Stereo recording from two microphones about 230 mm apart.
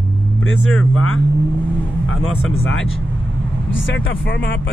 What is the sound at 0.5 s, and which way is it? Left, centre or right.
Speech, left.